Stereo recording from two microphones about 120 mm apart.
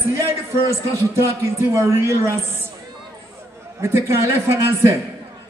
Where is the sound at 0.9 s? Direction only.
25° right (ahead or behind).